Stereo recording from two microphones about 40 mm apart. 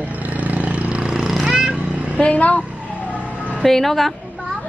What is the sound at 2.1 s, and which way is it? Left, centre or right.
Speech, left.